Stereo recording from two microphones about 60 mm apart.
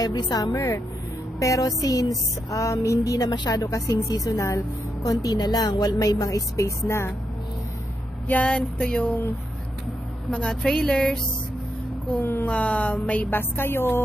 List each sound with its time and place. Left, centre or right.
0.0 s a woman's voice: left
1.4 s speech: left
6.9 s a woman's voice: left
8.3 s speech: left
10.3 s speech: centre
12.2 s a woman's voice: left
12.4 s a sound: centre
13.3 s a woman's voice: left